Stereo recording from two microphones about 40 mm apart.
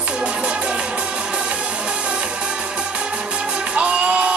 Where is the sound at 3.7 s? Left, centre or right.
Right.